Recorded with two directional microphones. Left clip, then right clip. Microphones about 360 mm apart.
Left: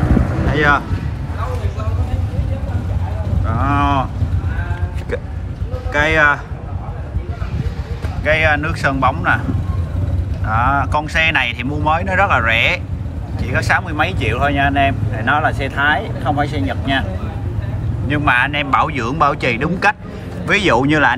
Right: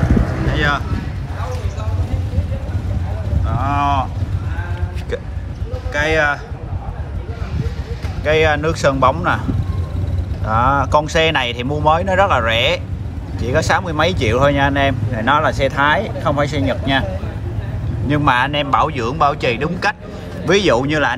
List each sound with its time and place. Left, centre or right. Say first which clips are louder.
0.5 s speech: left 5 dB; centre
3.4 s cattle: left 1 dB; centre
5.9 s speech: left 3 dB; centre
8.2 s speech: even; centre
10.5 s speech: right 2 dB; centre
18.0 s speech: even; centre